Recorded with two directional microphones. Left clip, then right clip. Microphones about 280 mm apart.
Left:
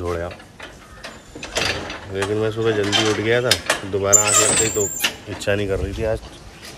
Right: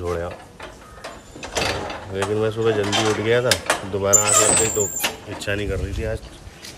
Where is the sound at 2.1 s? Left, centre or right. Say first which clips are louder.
Left 1 dB; centre.